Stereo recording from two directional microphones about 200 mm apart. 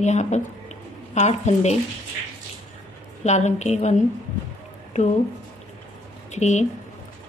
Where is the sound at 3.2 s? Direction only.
35° left (ahead or behind).